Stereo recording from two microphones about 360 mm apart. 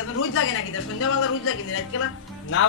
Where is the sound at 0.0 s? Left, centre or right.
Left.